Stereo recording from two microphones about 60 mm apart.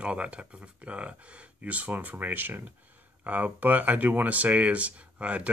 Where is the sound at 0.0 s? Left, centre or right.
Centre.